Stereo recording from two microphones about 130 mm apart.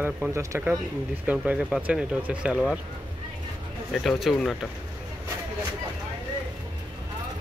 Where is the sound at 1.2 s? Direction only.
10° right (ahead or behind).